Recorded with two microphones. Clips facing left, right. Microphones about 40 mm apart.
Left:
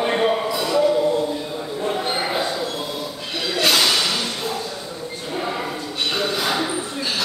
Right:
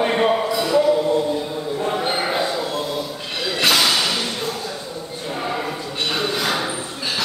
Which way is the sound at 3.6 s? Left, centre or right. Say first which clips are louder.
Right 1 dB; centre.